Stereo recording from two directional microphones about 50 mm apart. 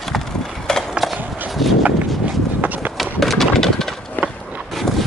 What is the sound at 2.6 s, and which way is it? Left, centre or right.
Run, right.